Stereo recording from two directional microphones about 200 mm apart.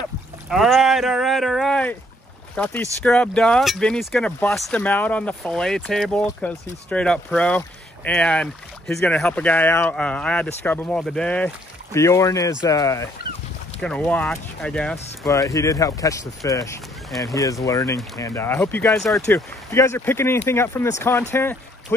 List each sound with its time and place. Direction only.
0.5 s speech: centre (ahead or behind)
15.2 s speech: 15° left (ahead or behind)
19.2 s speech: 15° left (ahead or behind)